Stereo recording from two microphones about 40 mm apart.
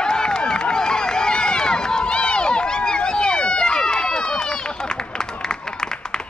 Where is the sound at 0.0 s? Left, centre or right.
Centre.